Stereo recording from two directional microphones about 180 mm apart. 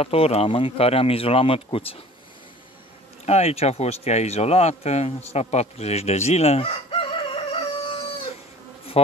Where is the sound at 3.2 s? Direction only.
35° left (ahead or behind).